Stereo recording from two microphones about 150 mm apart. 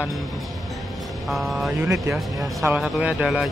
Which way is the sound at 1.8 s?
15° right (ahead or behind).